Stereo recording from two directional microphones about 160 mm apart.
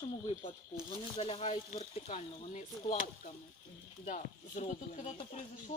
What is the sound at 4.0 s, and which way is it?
Speech, 45° left (ahead or behind).